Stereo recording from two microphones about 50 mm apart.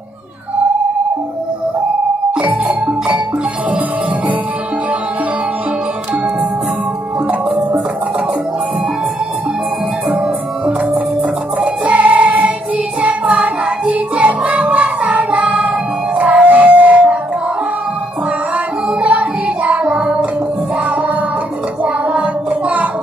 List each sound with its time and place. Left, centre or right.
11.6 s music: right
16.2 s a sound: right
18.9 s music: right
21.8 s child singing: right